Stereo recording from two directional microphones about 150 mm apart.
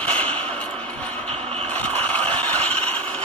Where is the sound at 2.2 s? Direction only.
40° right (ahead or behind).